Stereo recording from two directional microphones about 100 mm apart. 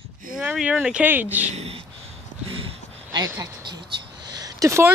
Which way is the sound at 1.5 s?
90° right.